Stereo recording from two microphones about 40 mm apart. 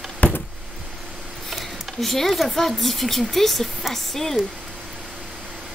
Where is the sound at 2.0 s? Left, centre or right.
Centre.